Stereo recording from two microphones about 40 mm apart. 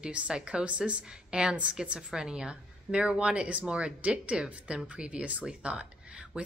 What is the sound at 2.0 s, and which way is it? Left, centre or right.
A woman's voice, centre.